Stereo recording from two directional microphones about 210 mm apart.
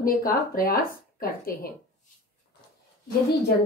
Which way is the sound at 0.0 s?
45° left (ahead or behind).